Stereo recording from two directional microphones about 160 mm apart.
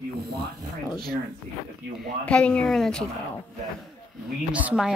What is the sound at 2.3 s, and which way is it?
Speech, 5° left (ahead or behind).